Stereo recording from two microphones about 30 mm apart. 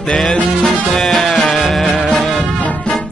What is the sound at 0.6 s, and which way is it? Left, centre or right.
Music, left.